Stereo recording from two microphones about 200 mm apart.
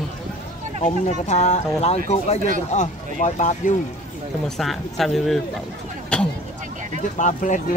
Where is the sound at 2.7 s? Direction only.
40° left (ahead or behind).